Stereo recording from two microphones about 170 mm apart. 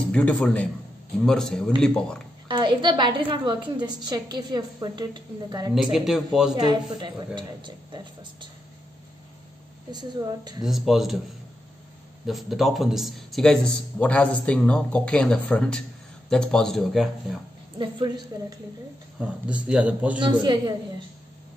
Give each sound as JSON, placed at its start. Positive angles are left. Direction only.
{"t": 0.1, "sound": "a man's voice", "side_deg": 5}
{"t": 2.4, "sound": "a woman's voice", "side_deg": -30}
{"t": 5.8, "sound": "speech", "side_deg": 0}
{"t": 6.5, "sound": "a woman's voice", "side_deg": -25}
{"t": 9.8, "sound": "a woman's voice", "side_deg": -25}
{"t": 10.6, "sound": "speech", "side_deg": 0}
{"t": 12.3, "sound": "speech", "side_deg": 0}
{"t": 17.7, "sound": "a woman's voice", "side_deg": -25}
{"t": 19.1, "sound": "speech", "side_deg": -5}
{"t": 20.2, "sound": "a woman's voice", "side_deg": -25}